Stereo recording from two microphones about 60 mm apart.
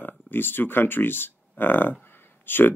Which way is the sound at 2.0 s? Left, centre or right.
Left.